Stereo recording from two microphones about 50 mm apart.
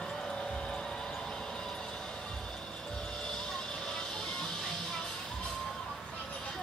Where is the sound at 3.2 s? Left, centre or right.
Centre.